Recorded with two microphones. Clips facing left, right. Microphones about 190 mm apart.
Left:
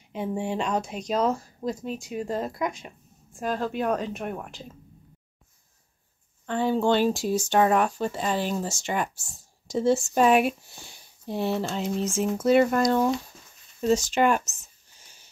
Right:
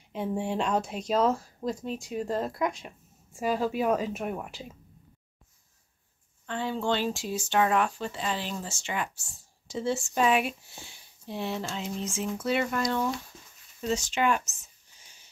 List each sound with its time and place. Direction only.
0.1 s speech: centre (ahead or behind)
6.4 s speech: 50° left (ahead or behind)